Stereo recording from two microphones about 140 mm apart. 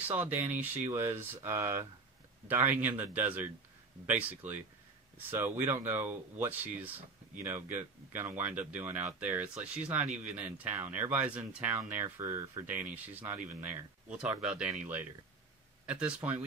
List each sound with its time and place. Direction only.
0.1 s speech: 15° right (ahead or behind)